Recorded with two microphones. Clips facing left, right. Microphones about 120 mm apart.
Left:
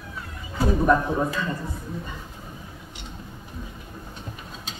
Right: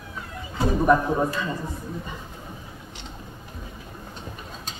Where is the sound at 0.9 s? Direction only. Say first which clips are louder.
Right 3 dB; 10° right (ahead or behind).